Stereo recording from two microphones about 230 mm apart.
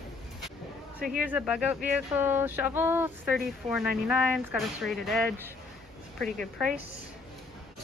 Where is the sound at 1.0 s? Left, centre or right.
Centre.